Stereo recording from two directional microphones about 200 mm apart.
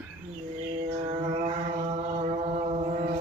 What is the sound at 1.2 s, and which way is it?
Chant, 30° right (ahead or behind).